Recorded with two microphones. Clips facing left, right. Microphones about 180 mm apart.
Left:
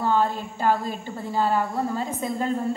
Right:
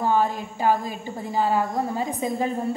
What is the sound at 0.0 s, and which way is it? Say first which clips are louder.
A woman's voice: right 1 dB; 15° right (ahead or behind).